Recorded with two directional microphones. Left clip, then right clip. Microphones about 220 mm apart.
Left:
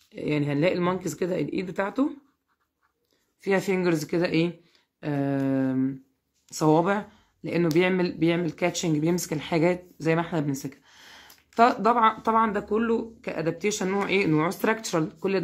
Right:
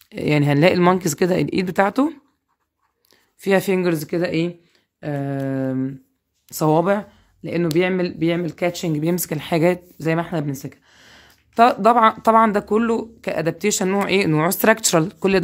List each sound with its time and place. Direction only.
0.1 s speech: 50° right (ahead or behind)
3.3 s speech: 40° right (ahead or behind)
5.0 s mantra: 25° right (ahead or behind)
6.4 s speech: 35° right (ahead or behind)